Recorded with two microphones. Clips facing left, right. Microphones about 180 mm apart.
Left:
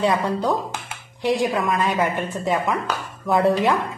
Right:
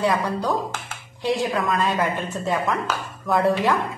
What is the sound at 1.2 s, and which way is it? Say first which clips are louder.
Speech: left 2 dB; 15° left (ahead or behind).